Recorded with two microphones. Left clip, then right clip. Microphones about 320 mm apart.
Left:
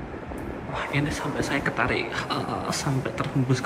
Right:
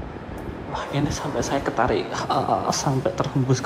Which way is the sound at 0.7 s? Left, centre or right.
Centre.